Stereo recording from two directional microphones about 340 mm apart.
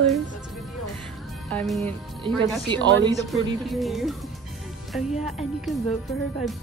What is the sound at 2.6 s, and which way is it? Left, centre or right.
Speech, centre.